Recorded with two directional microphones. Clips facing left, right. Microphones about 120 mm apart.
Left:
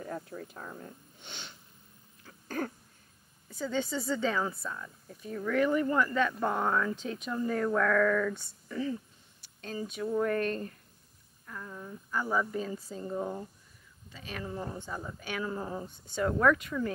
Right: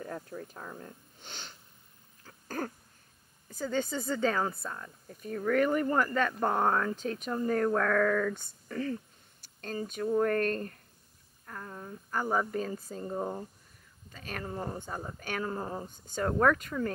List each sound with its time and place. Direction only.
0.0 s speech: 40° right (ahead or behind)
2.2 s a sound: 40° right (ahead or behind)
3.4 s a woman's voice: 45° right (ahead or behind)
13.1 s speech: 30° right (ahead or behind)
14.1 s speech: 45° right (ahead or behind)